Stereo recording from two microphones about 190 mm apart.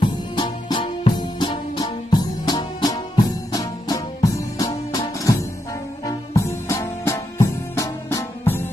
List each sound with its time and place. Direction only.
0.0 s music: 25° left (ahead or behind)